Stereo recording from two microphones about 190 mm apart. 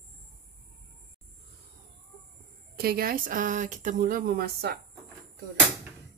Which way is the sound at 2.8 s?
55° right (ahead or behind).